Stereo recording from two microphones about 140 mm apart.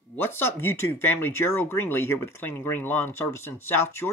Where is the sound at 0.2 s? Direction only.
15° left (ahead or behind).